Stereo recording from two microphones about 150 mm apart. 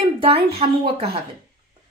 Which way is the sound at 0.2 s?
40° right (ahead or behind).